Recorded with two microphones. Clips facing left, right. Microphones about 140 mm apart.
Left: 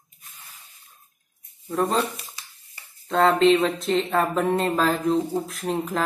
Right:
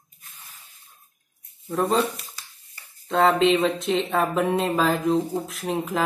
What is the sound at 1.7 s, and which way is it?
Speech, centre (ahead or behind).